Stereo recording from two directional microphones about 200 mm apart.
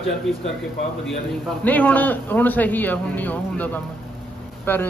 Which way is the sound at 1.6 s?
10° left (ahead or behind).